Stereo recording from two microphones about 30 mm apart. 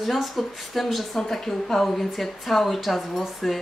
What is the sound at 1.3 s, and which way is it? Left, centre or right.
Speech, centre.